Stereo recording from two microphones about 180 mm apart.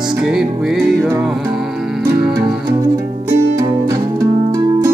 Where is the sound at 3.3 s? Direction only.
15° right (ahead or behind).